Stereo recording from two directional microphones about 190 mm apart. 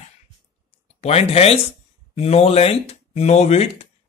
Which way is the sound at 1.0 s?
35° left (ahead or behind).